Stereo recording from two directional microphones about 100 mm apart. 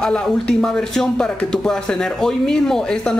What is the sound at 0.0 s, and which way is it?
A man's voice, 5° left (ahead or behind).